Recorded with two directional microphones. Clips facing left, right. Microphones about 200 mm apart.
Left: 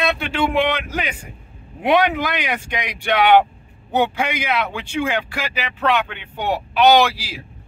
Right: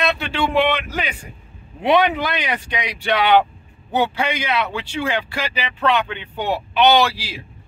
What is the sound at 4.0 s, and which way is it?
Speech, 10° left (ahead or behind).